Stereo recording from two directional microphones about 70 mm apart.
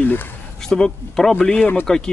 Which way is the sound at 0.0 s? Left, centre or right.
Left.